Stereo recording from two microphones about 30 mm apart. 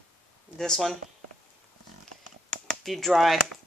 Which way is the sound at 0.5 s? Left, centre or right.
Centre.